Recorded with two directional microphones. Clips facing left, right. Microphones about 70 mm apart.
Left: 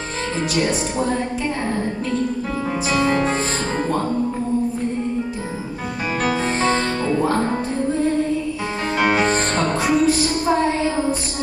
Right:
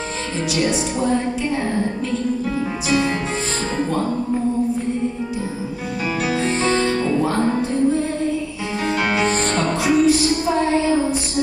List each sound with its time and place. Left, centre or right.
2.9 s music: left
6.2 s music: left
8.9 s music: left
9.6 s music: left